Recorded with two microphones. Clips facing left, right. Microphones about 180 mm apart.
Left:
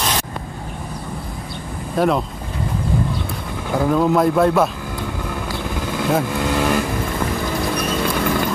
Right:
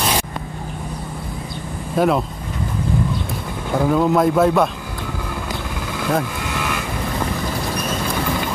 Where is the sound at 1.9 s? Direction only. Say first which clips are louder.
Right 1 dB; centre (ahead or behind).